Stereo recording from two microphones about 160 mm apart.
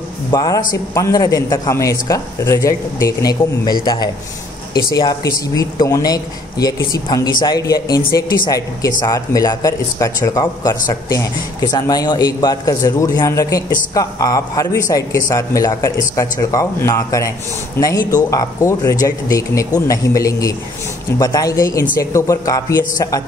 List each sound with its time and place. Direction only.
0.3 s a man's voice: 25° left (ahead or behind)